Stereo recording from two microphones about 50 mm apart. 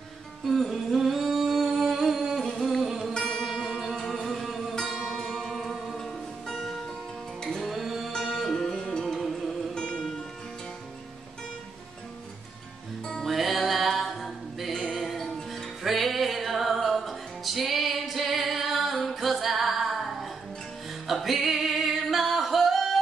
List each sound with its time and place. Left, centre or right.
0.5 s singing: centre
2.4 s music: centre
3.1 s music: centre
3.5 s music: centre
8.7 s music: centre
9.0 s music: centre
9.8 s music: centre
13.2 s music: centre
21.1 s singing: centre